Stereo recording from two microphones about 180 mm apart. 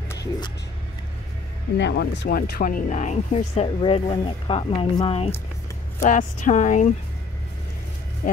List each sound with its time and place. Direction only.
0.1 s vehicle: 20° left (ahead or behind)
1.8 s speech: 75° left (ahead or behind); by 5.3 s 30° left (ahead or behind)
6.0 s speech: 45° left (ahead or behind)